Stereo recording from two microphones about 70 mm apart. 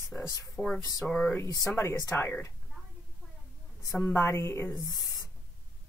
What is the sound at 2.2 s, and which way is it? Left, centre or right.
Speech, left.